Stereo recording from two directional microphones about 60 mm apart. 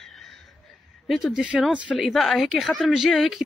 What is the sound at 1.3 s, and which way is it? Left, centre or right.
Speech, centre.